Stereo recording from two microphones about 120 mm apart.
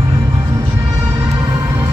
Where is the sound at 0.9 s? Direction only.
30° right (ahead or behind).